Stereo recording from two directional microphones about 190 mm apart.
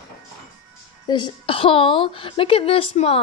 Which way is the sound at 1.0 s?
25° left (ahead or behind).